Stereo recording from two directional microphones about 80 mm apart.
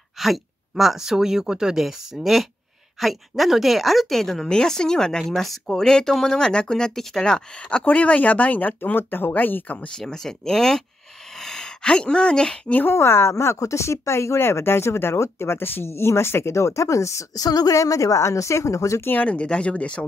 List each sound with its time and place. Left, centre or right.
0.2 s speech: centre; by 9.8 s left
9.9 s speech: centre
12.8 s speech: left
19.0 s speech: centre